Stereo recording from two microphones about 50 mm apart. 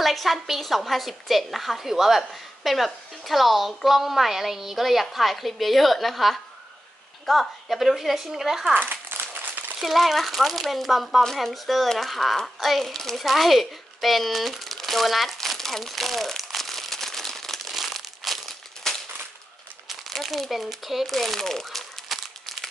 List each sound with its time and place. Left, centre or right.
0.0 s a woman's voice: centre
8.7 s crumpling: right
9.8 s a woman's voice: centre
12.5 s a sound: centre
19.9 s crumpling: centre